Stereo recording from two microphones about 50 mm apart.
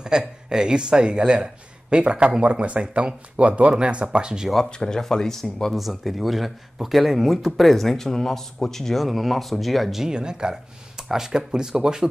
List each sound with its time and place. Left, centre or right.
0.0 s speech: centre
4.6 s speech: centre
10.0 s speech: centre